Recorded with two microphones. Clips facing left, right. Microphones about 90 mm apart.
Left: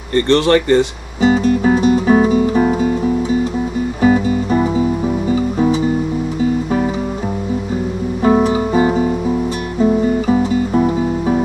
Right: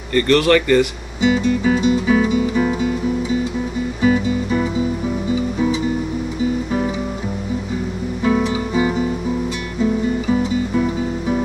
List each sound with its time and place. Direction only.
0.1 s guitar: 30° left (ahead or behind)
4.0 s music: 40° left (ahead or behind)
8.2 s music: 40° left (ahead or behind)